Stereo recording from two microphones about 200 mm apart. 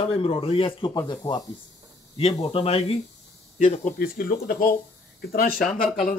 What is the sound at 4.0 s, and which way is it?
Speech, 50° left (ahead or behind).